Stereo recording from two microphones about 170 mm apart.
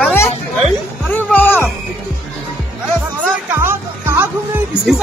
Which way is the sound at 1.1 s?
10° left (ahead or behind).